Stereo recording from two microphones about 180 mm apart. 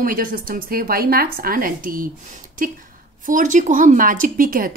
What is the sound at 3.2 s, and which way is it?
A woman's voice, 45° right (ahead or behind).